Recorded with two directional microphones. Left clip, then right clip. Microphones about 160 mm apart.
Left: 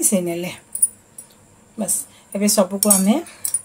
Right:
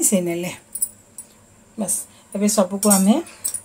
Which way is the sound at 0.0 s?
5° right (ahead or behind).